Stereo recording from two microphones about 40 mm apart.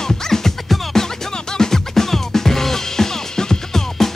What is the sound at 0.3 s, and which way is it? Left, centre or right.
Music, centre.